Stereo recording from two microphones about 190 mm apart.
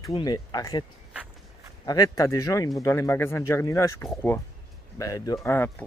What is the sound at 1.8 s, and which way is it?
A man's voice, 20° left (ahead or behind).